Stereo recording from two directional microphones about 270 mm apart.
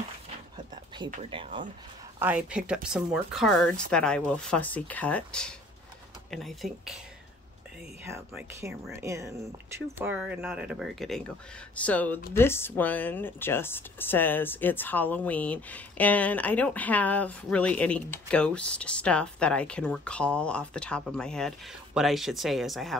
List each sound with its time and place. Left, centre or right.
1.1 s speech: centre
2.1 s speech: centre
8.0 s speech: centre